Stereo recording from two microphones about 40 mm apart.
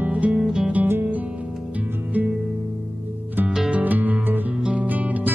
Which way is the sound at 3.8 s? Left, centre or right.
Right.